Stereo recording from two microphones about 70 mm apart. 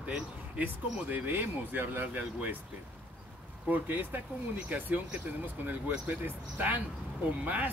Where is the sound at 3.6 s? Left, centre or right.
Right.